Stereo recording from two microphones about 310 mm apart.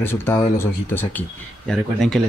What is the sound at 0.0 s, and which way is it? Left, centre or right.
Speech, centre.